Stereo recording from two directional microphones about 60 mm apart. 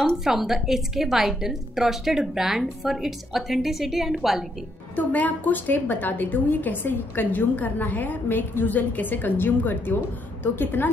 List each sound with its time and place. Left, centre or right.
0.2 s a woman's voice: centre
4.9 s a woman's voice: left